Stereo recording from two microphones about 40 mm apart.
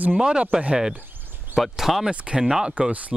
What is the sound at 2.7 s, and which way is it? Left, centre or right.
Speech, right.